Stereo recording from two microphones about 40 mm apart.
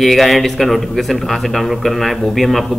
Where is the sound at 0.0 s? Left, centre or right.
Centre.